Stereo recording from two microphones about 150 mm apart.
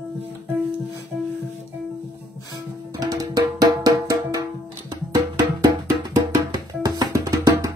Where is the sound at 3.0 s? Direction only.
25° right (ahead or behind).